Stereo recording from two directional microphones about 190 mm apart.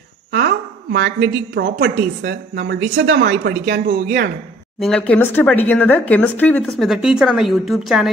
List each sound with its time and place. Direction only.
0.3 s a woman's voice: 60° right (ahead or behind)
4.7 s speech: 5° left (ahead or behind)